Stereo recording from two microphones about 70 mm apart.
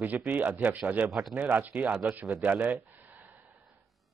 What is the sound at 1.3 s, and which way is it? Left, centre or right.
A man's voice, right.